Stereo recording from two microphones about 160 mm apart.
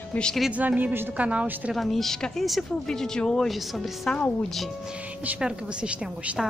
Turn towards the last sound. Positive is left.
turn(degrees=-5)  # may be behind; listen again after turning